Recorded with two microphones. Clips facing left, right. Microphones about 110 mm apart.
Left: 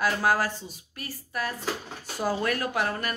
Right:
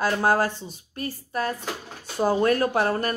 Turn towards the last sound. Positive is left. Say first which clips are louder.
# right 6 dB
turn(degrees=-30)  # may be behind; listen again after turning